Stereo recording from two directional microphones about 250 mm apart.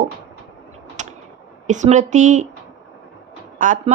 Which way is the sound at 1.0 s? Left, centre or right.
Right.